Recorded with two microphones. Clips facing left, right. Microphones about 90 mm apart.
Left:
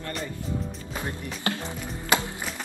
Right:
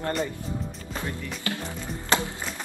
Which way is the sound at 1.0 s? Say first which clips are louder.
Left 2 dB; 25° left (ahead or behind).